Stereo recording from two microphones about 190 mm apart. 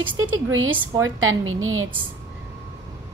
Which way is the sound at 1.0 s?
90° right.